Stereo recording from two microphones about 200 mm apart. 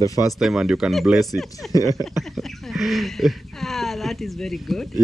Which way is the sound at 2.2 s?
Centre (ahead or behind).